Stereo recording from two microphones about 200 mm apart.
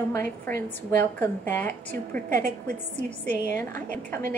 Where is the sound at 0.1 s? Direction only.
10° left (ahead or behind).